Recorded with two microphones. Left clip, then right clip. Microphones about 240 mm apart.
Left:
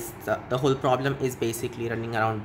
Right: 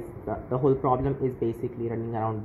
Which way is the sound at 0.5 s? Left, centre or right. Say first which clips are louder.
Right 1 dB; left.